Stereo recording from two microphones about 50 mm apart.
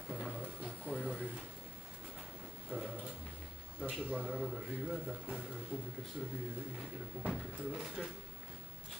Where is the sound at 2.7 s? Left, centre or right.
Right.